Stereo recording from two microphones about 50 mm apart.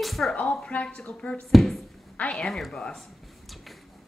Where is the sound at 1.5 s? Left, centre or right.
Centre.